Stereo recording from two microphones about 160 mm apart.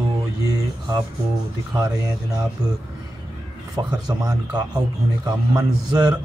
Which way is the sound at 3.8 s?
25° right (ahead or behind).